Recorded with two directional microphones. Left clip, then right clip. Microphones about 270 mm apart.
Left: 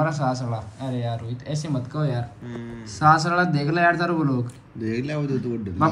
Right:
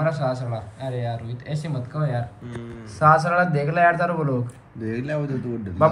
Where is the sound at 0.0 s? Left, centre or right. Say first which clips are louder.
Even; centre.